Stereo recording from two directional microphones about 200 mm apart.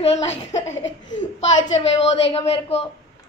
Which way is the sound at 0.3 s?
35° left (ahead or behind).